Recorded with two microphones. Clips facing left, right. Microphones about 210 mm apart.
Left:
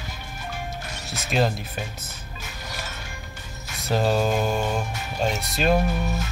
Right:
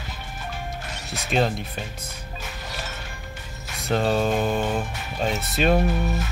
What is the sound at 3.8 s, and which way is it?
Speech, centre (ahead or behind).